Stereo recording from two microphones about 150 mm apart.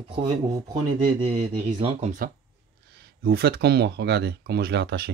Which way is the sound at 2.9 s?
90° right.